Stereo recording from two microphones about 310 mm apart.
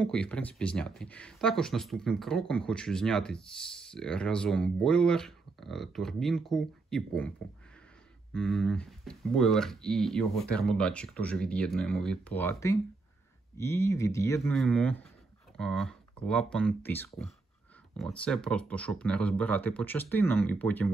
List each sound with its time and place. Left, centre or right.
0.0 s speech: centre